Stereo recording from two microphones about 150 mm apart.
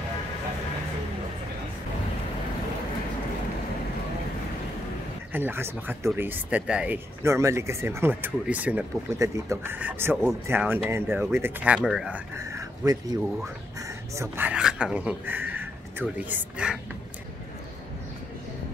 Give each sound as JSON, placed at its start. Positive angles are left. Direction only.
{"t": 5.3, "sound": "speech", "side_deg": -15}
{"t": 7.2, "sound": "speech", "side_deg": -20}
{"t": 12.4, "sound": "speech", "side_deg": -20}